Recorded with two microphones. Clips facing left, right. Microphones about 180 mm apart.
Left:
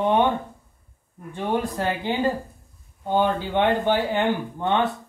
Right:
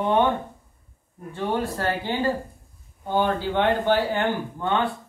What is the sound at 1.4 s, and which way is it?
Speech, 15° left (ahead or behind).